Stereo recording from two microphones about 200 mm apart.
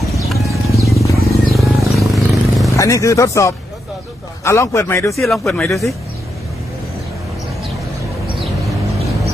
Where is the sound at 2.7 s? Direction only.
15° left (ahead or behind).